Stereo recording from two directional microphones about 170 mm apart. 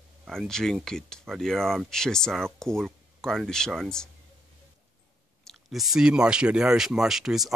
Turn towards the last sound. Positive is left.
turn(degrees=0)  # may be behind; listen again after turning